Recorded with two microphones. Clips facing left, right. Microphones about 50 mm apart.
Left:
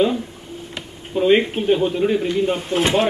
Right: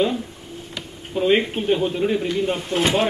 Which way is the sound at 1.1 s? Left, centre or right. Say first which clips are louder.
Left 3 dB; centre.